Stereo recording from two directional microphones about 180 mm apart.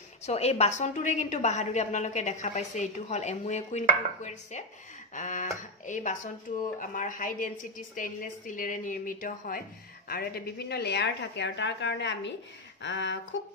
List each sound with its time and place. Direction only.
0.2 s a woman's voice: 35° left (ahead or behind); by 13.2 s 80° left